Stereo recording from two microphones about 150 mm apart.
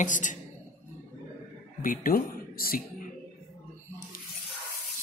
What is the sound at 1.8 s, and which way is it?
Speech, 65° left (ahead or behind).